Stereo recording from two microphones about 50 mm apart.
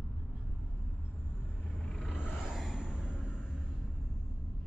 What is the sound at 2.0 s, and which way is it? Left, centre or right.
Vehicle, centre.